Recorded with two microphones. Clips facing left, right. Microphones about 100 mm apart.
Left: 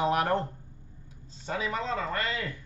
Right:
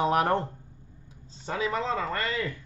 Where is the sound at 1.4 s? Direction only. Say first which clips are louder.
Right 2 dB; 30° right (ahead or behind).